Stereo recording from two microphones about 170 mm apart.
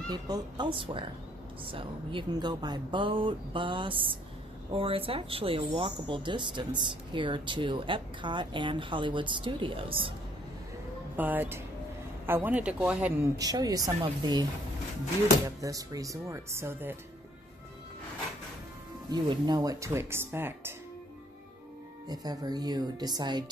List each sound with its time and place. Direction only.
0.1 s speech: 25° right (ahead or behind)
11.1 s speech: 10° right (ahead or behind)
13.4 s speech: 20° right (ahead or behind)
15.4 s speech: 20° right (ahead or behind)
19.0 s speech: 25° right (ahead or behind)
22.0 s speech: 25° right (ahead or behind)